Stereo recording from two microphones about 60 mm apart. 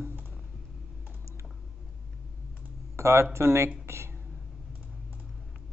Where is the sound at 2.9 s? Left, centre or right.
Right.